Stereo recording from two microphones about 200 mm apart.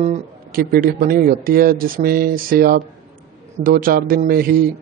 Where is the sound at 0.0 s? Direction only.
40° right (ahead or behind).